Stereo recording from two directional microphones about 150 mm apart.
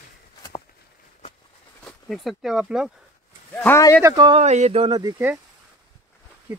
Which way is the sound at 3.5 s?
15° left (ahead or behind).